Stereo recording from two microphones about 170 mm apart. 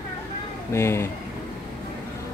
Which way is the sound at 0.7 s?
15° left (ahead or behind).